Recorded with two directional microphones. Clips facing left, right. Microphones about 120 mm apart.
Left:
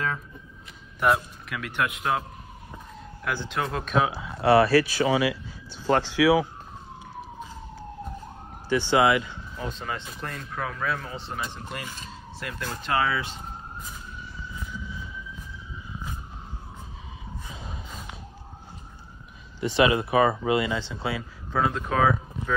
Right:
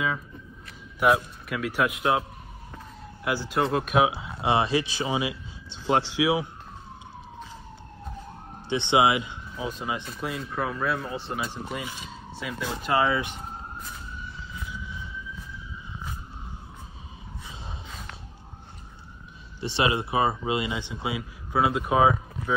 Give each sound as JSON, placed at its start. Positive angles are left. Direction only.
{"t": 0.9, "sound": "speech", "side_deg": -5}
{"t": 3.3, "sound": "speech", "side_deg": -10}
{"t": 8.6, "sound": "speech", "side_deg": -20}
{"t": 19.6, "sound": "speech", "side_deg": -30}